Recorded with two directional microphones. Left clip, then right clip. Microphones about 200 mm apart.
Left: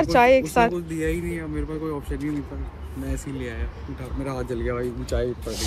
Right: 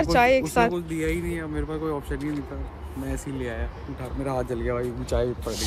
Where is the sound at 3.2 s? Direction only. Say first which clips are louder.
Right 1 dB; 25° right (ahead or behind).